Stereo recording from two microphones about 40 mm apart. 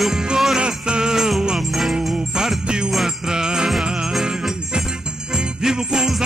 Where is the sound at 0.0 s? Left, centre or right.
Centre.